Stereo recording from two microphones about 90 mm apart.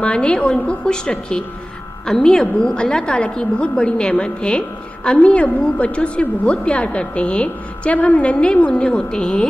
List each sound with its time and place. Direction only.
0.0 s a woman's voice: 10° left (ahead or behind)